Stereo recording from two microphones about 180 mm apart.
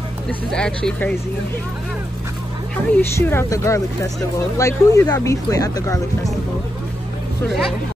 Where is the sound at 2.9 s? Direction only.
10° left (ahead or behind).